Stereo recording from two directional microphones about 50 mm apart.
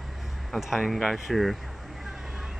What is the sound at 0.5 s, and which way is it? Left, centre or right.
Speech, centre.